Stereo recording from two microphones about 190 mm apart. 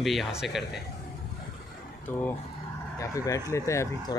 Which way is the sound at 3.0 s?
15° left (ahead or behind).